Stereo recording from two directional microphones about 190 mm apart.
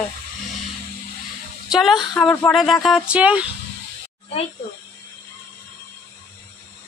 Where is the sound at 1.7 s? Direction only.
Centre (ahead or behind).